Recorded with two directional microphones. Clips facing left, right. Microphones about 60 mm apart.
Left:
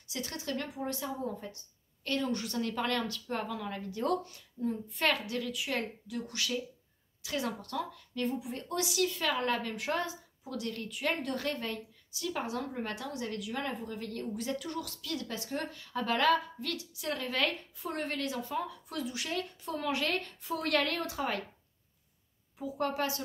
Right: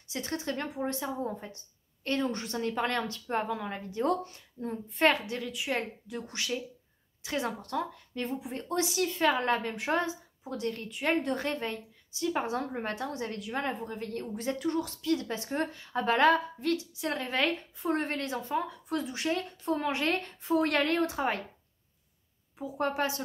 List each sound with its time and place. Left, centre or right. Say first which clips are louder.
0.1 s a woman's voice: right 3 dB; right
22.6 s a woman's voice: right 2 dB; right